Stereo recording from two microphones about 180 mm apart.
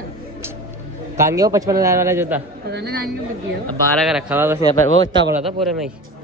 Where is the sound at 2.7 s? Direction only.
65° right (ahead or behind).